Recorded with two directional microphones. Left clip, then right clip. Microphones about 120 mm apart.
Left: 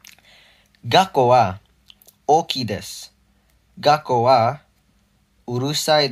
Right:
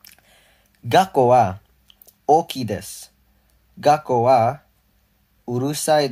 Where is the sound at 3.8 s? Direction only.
30° right (ahead or behind).